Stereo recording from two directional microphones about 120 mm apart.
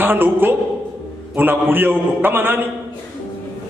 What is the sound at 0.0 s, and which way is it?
A woman's voice, 15° right (ahead or behind).